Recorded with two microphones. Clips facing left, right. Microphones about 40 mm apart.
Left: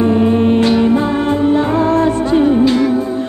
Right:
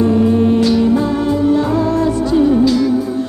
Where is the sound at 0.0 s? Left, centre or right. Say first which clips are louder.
Even; left.